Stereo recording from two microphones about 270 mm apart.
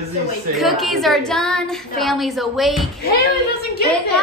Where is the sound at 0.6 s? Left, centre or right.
Centre.